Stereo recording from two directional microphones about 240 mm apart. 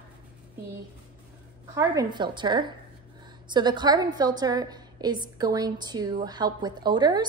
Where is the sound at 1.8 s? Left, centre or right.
Centre.